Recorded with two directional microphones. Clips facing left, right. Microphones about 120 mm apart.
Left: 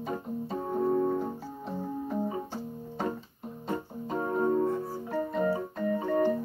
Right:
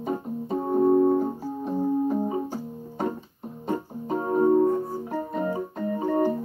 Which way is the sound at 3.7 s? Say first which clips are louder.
Right 5 dB; 25° right (ahead or behind).